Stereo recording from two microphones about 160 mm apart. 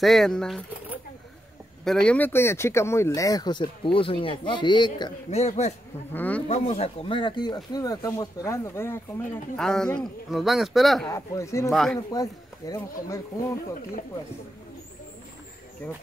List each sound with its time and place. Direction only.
0.0 s speech: centre (ahead or behind)
1.9 s speech: 5° left (ahead or behind); by 5.1 s 30° left (ahead or behind)
5.3 s a man's voice: 45° left (ahead or behind)
6.1 s speech: 10° left (ahead or behind)
6.5 s speech: 40° left (ahead or behind); by 9.0 s 15° left (ahead or behind)
9.6 s speech: 5° left (ahead or behind)
11.1 s speech: 20° left (ahead or behind)
11.7 s speech: centre (ahead or behind)
12.1 s speech: 20° left (ahead or behind)